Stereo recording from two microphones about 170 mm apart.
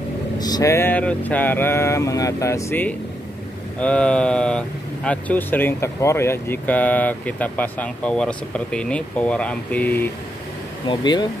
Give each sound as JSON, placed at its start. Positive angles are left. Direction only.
{"t": 0.4, "sound": "speech", "side_deg": 20}
{"t": 10.9, "sound": "speech", "side_deg": 25}